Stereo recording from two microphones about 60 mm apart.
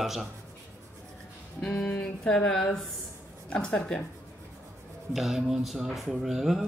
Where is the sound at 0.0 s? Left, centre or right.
Centre.